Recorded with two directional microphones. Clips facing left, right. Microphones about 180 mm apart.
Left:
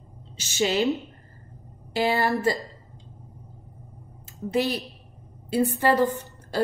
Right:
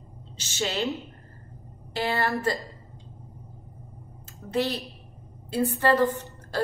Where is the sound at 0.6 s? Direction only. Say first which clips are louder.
Left 5 dB; 15° left (ahead or behind).